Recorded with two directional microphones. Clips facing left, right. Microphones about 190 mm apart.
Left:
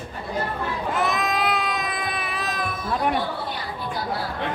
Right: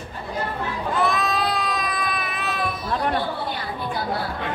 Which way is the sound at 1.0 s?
20° left (ahead or behind).